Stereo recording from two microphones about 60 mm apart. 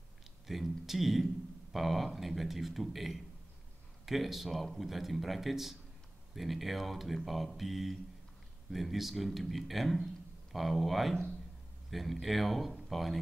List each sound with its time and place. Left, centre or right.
0.5 s speech: centre